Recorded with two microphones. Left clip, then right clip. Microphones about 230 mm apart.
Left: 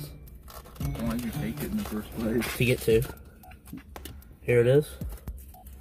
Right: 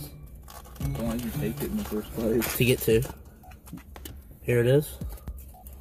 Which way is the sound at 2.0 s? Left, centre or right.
Centre.